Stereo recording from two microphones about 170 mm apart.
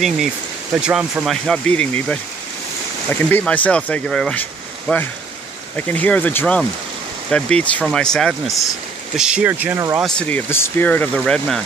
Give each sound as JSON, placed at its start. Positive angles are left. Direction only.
{"t": 0.7, "sound": "speech", "side_deg": -5}
{"t": 10.0, "sound": "speech", "side_deg": 5}